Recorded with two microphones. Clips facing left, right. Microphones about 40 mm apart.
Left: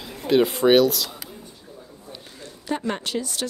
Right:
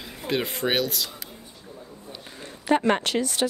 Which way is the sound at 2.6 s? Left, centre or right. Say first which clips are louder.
Right 6 dB; right.